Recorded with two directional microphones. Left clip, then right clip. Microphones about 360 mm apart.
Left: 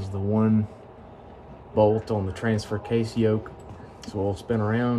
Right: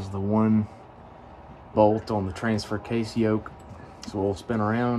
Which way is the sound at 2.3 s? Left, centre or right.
Centre.